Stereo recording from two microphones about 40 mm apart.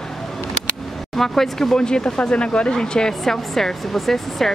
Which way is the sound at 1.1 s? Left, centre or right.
Centre.